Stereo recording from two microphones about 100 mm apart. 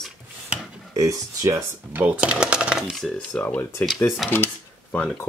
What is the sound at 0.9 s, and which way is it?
Speech, 35° right (ahead or behind).